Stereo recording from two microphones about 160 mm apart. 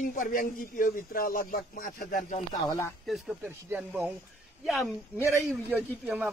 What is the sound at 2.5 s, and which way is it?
Speech, 25° left (ahead or behind).